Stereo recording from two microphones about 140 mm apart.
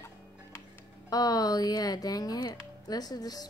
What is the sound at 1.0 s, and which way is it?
Speech, 25° left (ahead or behind).